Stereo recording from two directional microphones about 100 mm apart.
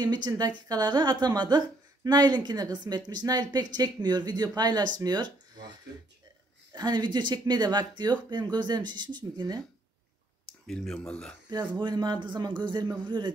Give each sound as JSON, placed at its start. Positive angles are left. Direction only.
{"t": 0.0, "sound": "a woman's voice", "side_deg": -45}
{"t": 6.7, "sound": "a woman's voice", "side_deg": -45}
{"t": 10.7, "sound": "speech", "side_deg": 5}
{"t": 11.5, "sound": "a woman's voice", "side_deg": -45}